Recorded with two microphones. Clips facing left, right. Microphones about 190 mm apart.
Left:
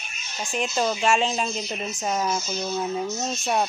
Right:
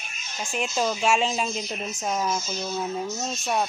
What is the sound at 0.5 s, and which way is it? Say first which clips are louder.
Speech: left 1 dB; 5° right (ahead or behind).